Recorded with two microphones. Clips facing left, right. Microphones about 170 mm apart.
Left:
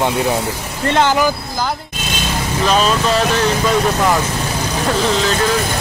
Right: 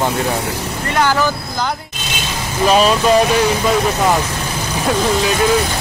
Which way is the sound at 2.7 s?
10° right (ahead or behind).